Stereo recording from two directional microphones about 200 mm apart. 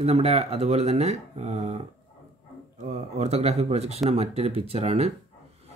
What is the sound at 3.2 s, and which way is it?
Speech, 30° right (ahead or behind).